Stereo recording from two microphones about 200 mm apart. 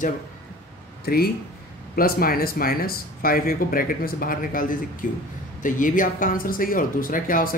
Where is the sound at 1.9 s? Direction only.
45° left (ahead or behind).